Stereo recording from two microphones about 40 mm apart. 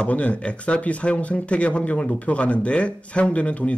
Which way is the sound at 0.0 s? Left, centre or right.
Left.